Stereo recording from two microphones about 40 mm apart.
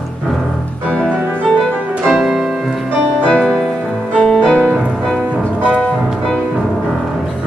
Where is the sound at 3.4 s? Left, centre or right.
Centre.